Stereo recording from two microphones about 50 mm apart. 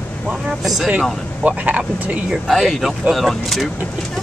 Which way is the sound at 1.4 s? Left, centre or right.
Right.